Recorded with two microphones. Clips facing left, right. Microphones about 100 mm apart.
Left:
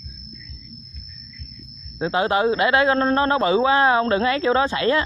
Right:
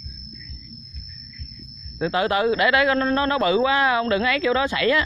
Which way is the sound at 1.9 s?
25° left (ahead or behind).